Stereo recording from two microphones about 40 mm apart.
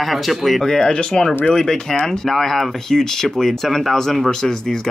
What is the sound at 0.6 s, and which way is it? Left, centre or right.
Speech, centre.